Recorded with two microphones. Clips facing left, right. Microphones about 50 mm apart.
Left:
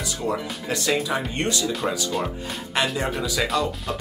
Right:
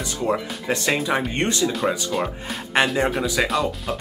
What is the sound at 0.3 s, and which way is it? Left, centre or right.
Speech, right.